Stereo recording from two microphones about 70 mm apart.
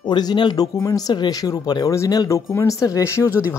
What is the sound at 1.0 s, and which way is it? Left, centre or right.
Speech, left.